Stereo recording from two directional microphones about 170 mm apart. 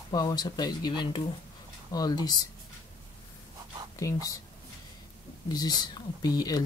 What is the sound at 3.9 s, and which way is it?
Speech, 20° left (ahead or behind).